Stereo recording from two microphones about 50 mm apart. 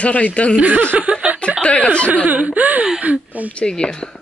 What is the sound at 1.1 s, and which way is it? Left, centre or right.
Chuckle, right.